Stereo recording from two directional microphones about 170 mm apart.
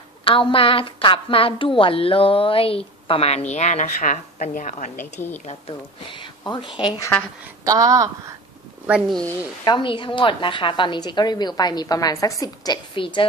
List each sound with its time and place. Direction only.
0.2 s a woman's voice: 30° left (ahead or behind); by 5.3 s 50° left (ahead or behind)
5.5 s a woman's voice: 30° left (ahead or behind)
7.6 s speech: 20° right (ahead or behind)
8.8 s speech: 5° right (ahead or behind)
9.7 s a woman's voice: 30° left (ahead or behind)